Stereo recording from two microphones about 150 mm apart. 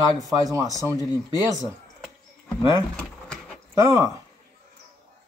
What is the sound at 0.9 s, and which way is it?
Speech, 25° left (ahead or behind).